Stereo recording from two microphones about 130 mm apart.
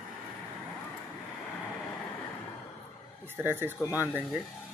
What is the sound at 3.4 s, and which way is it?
Speech, 15° right (ahead or behind).